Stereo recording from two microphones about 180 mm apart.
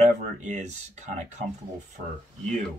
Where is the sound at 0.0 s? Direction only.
40° right (ahead or behind).